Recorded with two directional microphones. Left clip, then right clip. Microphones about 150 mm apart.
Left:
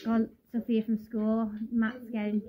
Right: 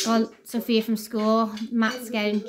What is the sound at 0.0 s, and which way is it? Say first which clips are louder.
Speech: right 8 dB; 30° right (ahead or behind).